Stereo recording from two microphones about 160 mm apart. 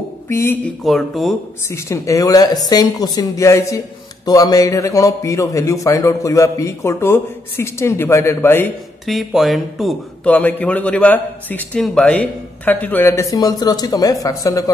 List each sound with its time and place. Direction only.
0.3 s speech: 15° left (ahead or behind)
0.8 s speech: centre (ahead or behind)
1.7 s a man's voice: 20° left (ahead or behind)
9.0 s a man's voice: centre (ahead or behind); by 14.7 s 20° left (ahead or behind)